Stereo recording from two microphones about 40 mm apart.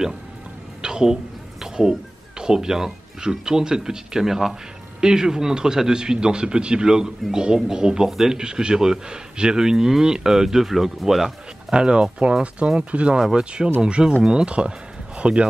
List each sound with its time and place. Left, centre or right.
0.8 s a sound: centre
1.6 s speech: centre
5.0 s speech: centre
11.7 s speech: right